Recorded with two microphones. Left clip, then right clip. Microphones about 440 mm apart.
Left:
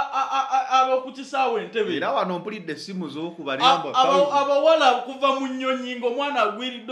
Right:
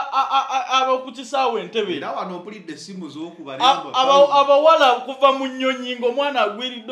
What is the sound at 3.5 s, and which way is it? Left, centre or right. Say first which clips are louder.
A man's voice: right 1 dB; right.